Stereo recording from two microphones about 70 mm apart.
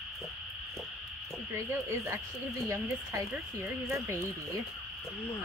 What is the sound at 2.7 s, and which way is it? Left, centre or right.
Speech, right.